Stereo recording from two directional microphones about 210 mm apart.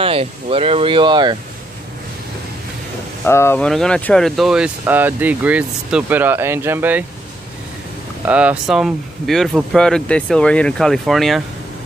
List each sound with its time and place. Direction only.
0.0 s speech: 25° right (ahead or behind)
3.3 s speech: 10° left (ahead or behind); by 7.1 s 10° right (ahead or behind)
8.3 s speech: 5° right (ahead or behind)